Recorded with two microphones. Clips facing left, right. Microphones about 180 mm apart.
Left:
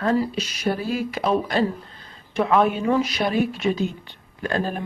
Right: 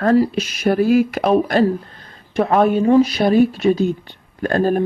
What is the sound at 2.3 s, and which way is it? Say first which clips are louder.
Speech: right 4 dB; 45° right (ahead or behind).